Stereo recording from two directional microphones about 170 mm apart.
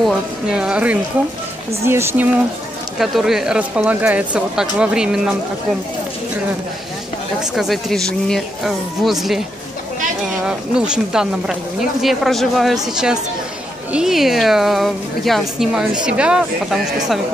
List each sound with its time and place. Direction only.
0.0 s speech: 5° right (ahead or behind)
3.0 s speech: centre (ahead or behind)
7.5 s speech: centre (ahead or behind)
10.4 s speech: 5° right (ahead or behind)